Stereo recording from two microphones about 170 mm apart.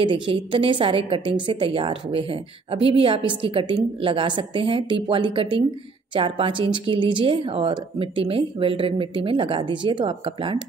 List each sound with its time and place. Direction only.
0.0 s a woman's voice: 30° right (ahead or behind)